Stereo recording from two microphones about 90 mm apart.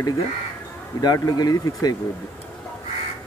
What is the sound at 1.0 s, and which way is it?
Speech, 45° left (ahead or behind).